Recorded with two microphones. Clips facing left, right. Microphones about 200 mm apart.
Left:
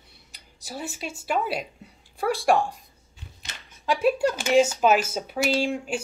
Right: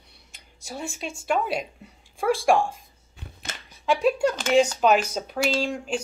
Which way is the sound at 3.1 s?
60° right (ahead or behind).